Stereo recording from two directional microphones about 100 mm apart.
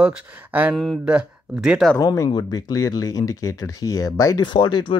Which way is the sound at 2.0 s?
35° left (ahead or behind).